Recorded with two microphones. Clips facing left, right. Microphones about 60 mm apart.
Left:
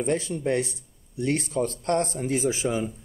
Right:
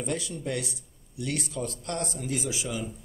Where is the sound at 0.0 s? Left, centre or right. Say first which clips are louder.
Left 6 dB; left.